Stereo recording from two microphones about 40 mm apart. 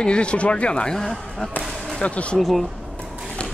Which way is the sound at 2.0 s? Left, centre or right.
Left.